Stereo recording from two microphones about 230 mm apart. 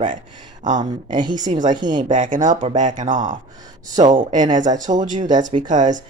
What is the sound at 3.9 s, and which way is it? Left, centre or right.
Speech, centre.